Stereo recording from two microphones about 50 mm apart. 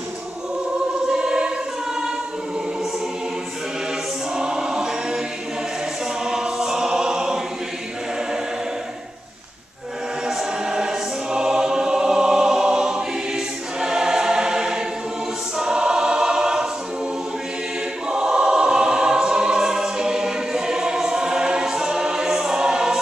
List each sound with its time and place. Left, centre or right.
1.1 s choir: centre
4.4 s choir: centre
6.2 s choir: centre
10.2 s choir: centre
18.0 s choir: centre